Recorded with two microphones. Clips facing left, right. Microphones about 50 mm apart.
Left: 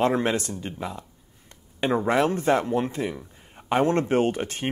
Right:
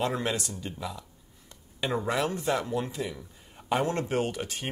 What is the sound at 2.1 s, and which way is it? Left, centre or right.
Speech, left.